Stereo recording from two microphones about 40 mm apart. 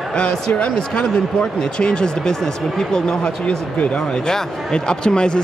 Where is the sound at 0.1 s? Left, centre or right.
Centre.